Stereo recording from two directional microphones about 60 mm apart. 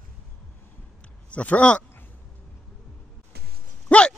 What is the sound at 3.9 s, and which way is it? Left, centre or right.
Dog, centre.